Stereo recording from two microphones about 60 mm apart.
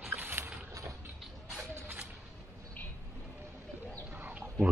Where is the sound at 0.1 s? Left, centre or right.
Right.